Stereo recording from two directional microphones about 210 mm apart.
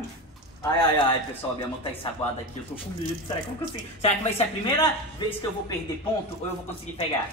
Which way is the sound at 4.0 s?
30° left (ahead or behind).